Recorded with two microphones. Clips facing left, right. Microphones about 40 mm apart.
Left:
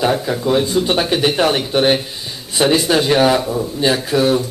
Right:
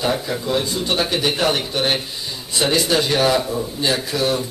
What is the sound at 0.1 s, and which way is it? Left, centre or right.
Speech, centre.